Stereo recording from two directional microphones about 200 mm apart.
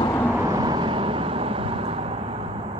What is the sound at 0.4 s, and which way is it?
Vehicle, 20° right (ahead or behind).